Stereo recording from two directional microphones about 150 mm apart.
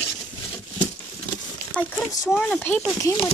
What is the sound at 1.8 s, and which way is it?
Speech, 10° left (ahead or behind).